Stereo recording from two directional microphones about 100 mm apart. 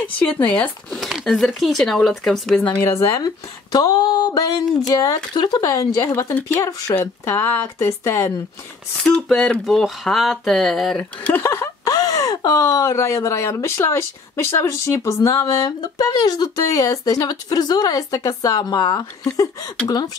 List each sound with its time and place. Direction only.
0.0 s speech: 15° left (ahead or behind)
2.8 s speech: 30° left (ahead or behind)
3.7 s speech: 45° left (ahead or behind)
7.0 s speech: 20° left (ahead or behind)
8.9 s speech: 5° left (ahead or behind)
11.4 s speech: 30° left (ahead or behind); by 19.0 s 45° left (ahead or behind)
19.2 s speech: 35° left (ahead or behind)